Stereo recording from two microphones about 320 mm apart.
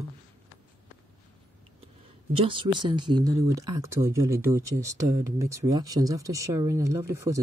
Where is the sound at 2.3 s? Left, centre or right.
Centre.